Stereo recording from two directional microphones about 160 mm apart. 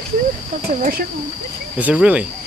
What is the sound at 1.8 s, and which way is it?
Speech, 10° right (ahead or behind).